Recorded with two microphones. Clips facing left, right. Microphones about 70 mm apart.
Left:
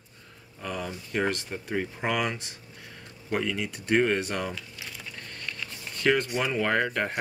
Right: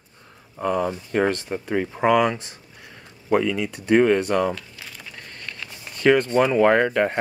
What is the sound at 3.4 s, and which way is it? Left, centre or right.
Speech, right.